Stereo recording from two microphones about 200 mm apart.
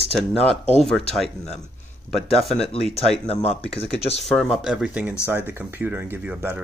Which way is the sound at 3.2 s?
30° left (ahead or behind).